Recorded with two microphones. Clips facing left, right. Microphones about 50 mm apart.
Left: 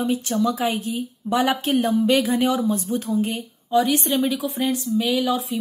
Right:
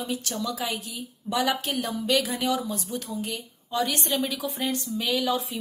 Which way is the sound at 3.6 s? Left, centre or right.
Centre.